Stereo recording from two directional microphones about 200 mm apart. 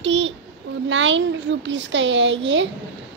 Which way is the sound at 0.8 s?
70° right (ahead or behind).